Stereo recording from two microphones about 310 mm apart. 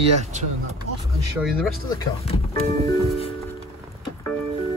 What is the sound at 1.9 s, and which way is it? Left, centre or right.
Speech, centre.